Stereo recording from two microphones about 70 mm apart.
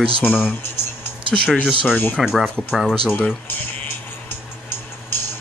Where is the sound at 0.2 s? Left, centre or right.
Left.